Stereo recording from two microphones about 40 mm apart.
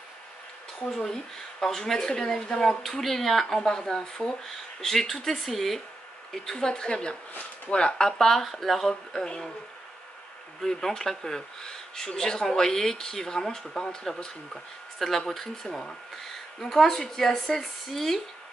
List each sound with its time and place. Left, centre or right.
0.9 s speech: centre
2.8 s speech: centre
6.5 s a woman's voice: left
8.2 s speech: centre
10.6 s speech: centre